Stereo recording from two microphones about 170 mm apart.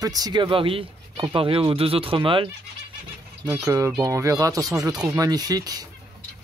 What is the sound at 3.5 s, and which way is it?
Speech, 15° right (ahead or behind).